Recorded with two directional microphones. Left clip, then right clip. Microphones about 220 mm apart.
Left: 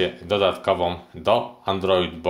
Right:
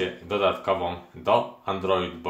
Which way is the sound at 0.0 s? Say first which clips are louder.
Left 4 dB; 50° left (ahead or behind).